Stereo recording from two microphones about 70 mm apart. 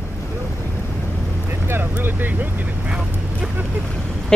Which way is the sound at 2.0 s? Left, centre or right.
Right.